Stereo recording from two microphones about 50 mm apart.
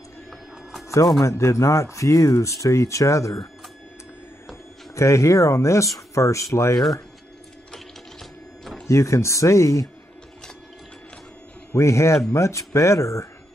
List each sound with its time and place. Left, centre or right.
0.3 s music: centre
1.4 s speech: left
4.9 s speech: left
7.7 s a sound: centre
8.8 s speech: left
11.7 s speech: left